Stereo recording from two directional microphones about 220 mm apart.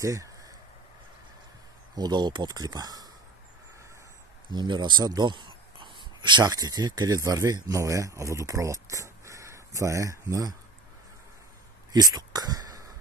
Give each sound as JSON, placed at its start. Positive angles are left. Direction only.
{"t": 0.0, "sound": "speech", "side_deg": -15}
{"t": 2.0, "sound": "speech", "side_deg": -20}
{"t": 4.5, "sound": "speech", "side_deg": -20}
{"t": 11.9, "sound": "speech", "side_deg": -15}